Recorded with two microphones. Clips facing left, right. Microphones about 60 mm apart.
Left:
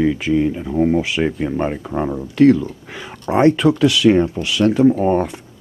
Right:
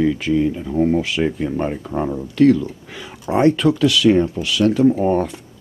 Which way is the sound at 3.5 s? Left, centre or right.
Centre.